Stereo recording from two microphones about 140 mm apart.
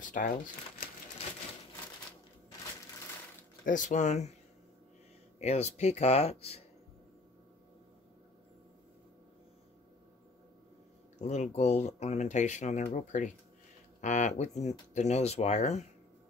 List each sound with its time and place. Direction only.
0.0 s speech: 70° left (ahead or behind)
3.6 s speech: 65° left (ahead or behind)
5.4 s speech: 50° left (ahead or behind)
11.1 s speech: 55° left (ahead or behind)